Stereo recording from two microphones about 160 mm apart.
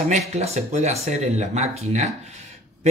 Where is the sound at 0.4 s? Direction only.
40° right (ahead or behind).